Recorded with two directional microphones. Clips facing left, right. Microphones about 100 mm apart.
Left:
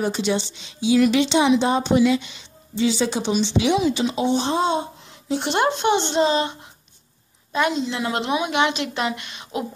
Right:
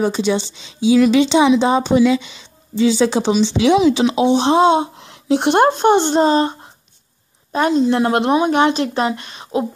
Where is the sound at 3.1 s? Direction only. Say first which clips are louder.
Right 5 dB; 90° right; by 8.4 s 50° right (ahead or behind).